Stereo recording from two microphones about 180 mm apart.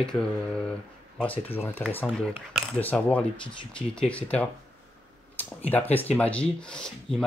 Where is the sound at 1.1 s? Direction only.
10° left (ahead or behind).